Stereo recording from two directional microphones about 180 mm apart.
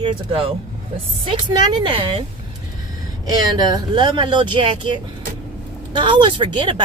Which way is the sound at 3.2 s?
20° right (ahead or behind).